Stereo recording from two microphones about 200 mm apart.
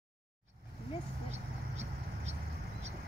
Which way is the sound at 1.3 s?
35° right (ahead or behind).